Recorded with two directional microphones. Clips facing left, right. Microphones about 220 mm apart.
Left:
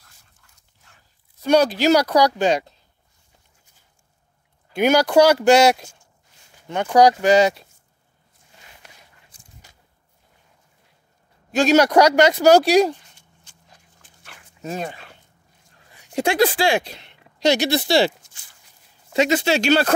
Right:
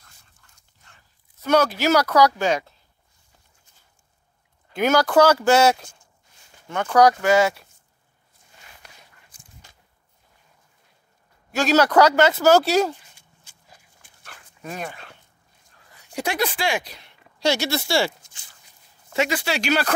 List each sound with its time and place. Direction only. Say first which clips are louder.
0.0 s dog: even; centre (ahead or behind)
1.4 s speech: left 3 dB; 15° left (ahead or behind)
4.7 s speech: left 2 dB; 15° left (ahead or behind)
11.5 s speech: left 3 dB; 15° left (ahead or behind)
13.4 s a sound: right 1 dB; 5° right (ahead or behind)
14.6 s speech: left 4 dB; 25° left (ahead or behind)
16.2 s speech: left 7 dB; 30° left (ahead or behind)